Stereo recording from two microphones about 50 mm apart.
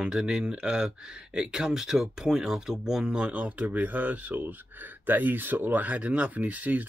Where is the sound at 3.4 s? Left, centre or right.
Right.